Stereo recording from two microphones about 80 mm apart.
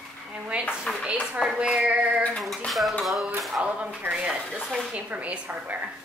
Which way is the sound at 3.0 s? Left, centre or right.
Centre.